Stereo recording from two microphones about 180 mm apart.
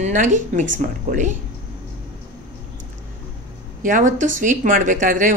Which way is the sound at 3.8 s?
45° right (ahead or behind).